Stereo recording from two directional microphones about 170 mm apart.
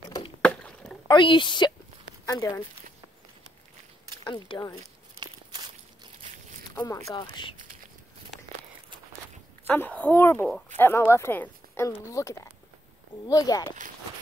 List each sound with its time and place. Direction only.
0.4 s chop: 5° left (ahead or behind)
1.0 s a woman's voice: 30° left (ahead or behind)
4.2 s speech: 25° left (ahead or behind)
5.2 s walk: 25° right (ahead or behind)
6.7 s speech: 15° left (ahead or behind)
9.7 s a woman's voice: 10° left (ahead or behind)